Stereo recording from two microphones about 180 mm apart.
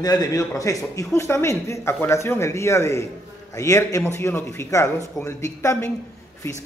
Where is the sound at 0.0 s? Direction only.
20° left (ahead or behind).